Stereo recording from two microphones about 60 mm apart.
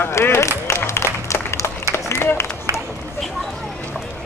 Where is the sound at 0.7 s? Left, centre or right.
Left.